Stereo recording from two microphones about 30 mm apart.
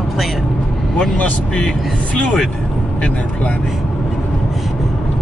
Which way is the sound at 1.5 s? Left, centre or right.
Left.